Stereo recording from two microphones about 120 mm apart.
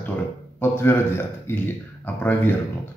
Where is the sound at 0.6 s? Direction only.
20° left (ahead or behind).